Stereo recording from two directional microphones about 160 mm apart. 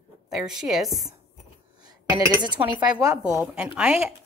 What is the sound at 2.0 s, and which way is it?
A woman's voice, 25° right (ahead or behind).